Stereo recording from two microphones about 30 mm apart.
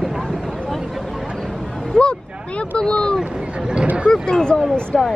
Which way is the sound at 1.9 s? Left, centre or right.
Left.